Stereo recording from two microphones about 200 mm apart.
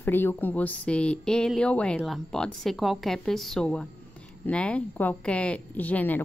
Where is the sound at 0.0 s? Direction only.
10° left (ahead or behind).